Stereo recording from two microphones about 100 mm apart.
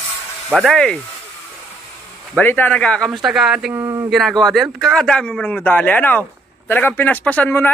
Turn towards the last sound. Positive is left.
turn(degrees=20)  # may be behind; listen again after turning